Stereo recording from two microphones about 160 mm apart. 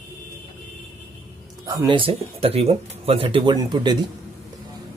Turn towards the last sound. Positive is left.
turn(degrees=-25)  # may be behind; listen again after turning